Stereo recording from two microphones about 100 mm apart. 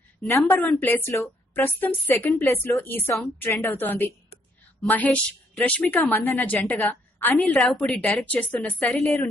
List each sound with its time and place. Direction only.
0.5 s a woman's voice: 20° left (ahead or behind)
7.5 s a woman's voice: 5° left (ahead or behind)